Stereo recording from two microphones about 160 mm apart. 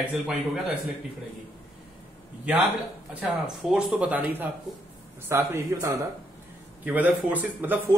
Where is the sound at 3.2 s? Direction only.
5° right (ahead or behind).